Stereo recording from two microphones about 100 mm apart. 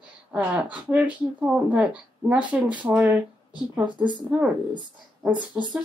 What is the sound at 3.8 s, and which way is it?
Speech, 55° right (ahead or behind).